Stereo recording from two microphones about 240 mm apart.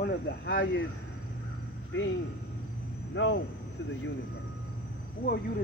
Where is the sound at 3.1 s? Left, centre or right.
Left.